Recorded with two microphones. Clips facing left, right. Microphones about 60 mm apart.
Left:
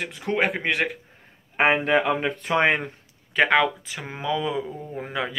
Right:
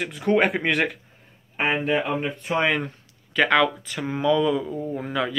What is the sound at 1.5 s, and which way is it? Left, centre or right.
Speech, left.